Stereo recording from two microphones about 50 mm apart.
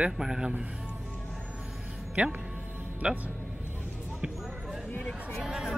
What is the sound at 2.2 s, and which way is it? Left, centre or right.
Speech, right.